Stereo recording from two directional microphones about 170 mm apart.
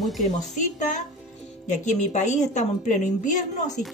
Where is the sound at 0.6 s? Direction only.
45° left (ahead or behind).